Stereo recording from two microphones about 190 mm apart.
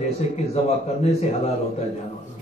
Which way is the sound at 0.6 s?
35° left (ahead or behind).